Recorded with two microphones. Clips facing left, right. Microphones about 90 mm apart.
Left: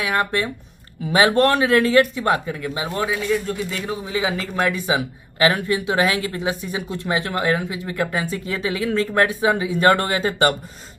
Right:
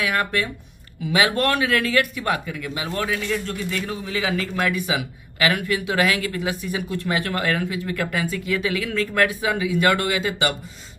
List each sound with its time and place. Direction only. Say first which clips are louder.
0.0 s speech: left 2 dB; 25° left (ahead or behind)